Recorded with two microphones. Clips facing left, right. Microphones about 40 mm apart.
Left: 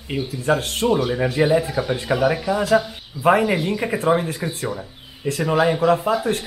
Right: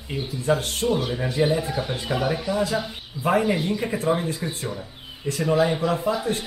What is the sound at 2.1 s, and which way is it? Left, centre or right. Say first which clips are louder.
Speech: left 5 dB; left.